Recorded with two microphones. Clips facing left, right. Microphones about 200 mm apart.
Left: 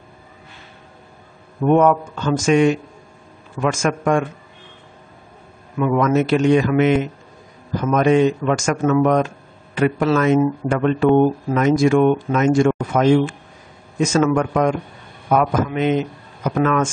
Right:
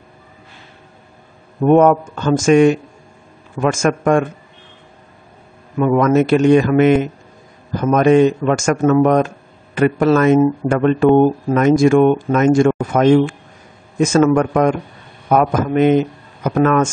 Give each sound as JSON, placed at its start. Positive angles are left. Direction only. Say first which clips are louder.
{"t": 1.6, "sound": "speech", "louder": "right 4 dB", "side_deg": -45}
{"t": 5.8, "sound": "speech", "louder": "right 4 dB", "side_deg": -45}